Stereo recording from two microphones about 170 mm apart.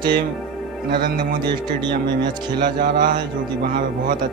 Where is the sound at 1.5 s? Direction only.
25° right (ahead or behind).